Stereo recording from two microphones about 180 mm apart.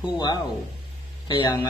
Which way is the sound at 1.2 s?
25° left (ahead or behind).